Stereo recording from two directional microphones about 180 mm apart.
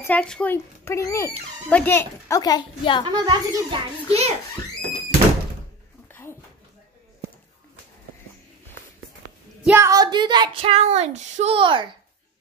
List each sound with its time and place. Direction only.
0.0 s speech: 5° left (ahead or behind); by 3.0 s 25° left (ahead or behind)
3.1 s child singing: 20° right (ahead or behind)
9.7 s child singing: 15° right (ahead or behind)